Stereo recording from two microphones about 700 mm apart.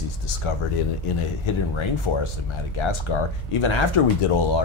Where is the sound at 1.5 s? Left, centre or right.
Left.